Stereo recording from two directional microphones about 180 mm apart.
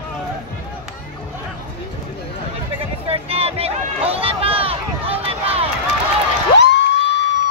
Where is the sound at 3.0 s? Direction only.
35° right (ahead or behind).